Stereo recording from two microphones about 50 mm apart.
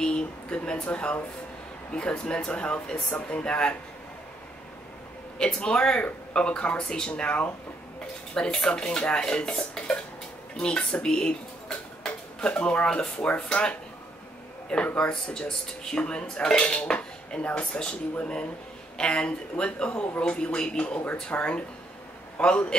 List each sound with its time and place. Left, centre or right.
0.0 s speech: centre
0.8 s speech: left
5.4 s speech: centre
8.4 s speech: centre
12.0 s dishes: centre
13.3 s speech: left
15.0 s speech: centre